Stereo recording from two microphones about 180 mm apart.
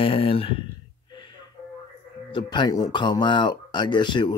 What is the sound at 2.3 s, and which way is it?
Speech, 25° left (ahead or behind).